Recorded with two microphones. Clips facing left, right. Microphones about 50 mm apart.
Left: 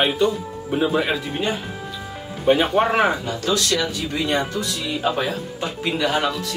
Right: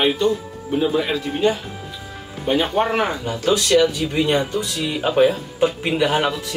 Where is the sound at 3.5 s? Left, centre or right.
Right.